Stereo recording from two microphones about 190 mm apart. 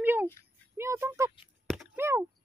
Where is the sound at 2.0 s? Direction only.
15° right (ahead or behind).